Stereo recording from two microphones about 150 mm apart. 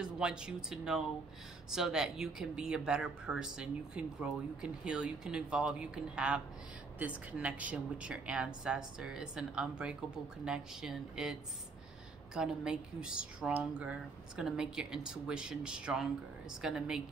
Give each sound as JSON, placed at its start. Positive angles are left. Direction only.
{"t": 0.0, "sound": "speech", "side_deg": -5}
{"t": 12.4, "sound": "speech", "side_deg": -5}